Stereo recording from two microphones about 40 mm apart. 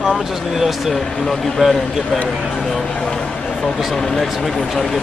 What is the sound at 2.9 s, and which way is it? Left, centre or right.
Speech, left.